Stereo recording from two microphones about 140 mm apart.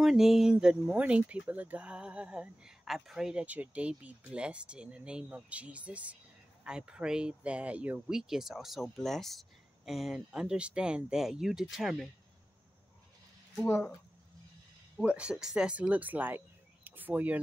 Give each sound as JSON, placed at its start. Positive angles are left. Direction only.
{"t": 0.0, "sound": "speech", "side_deg": 0}
{"t": 13.7, "sound": "speech", "side_deg": 20}
{"t": 15.0, "sound": "speech", "side_deg": -5}